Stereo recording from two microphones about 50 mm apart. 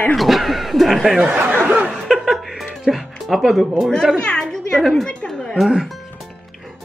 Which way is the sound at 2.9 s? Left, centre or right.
Centre.